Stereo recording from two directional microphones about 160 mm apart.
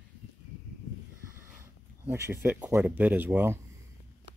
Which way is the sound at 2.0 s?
20° right (ahead or behind).